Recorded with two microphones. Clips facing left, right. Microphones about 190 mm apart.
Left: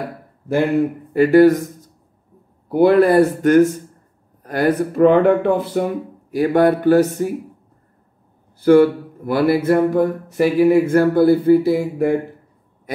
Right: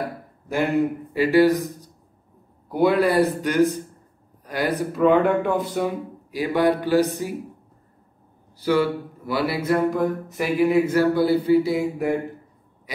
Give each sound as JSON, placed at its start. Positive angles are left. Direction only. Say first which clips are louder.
{"t": 1.1, "sound": "speech", "louder": "left 6 dB", "side_deg": 50}
{"t": 8.5, "sound": "a man's voice", "louder": "left 9 dB", "side_deg": 55}